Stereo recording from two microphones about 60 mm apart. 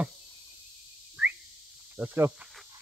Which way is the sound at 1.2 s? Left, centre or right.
Centre.